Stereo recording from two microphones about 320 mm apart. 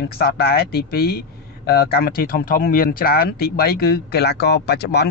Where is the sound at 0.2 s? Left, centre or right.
Left.